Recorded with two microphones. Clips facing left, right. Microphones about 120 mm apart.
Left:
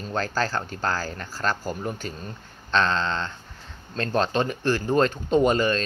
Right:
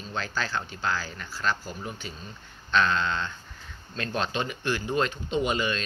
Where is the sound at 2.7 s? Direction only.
30° left (ahead or behind).